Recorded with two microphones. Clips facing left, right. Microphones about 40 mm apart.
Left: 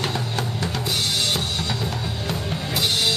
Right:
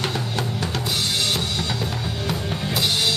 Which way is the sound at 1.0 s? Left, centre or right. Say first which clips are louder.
Even; right.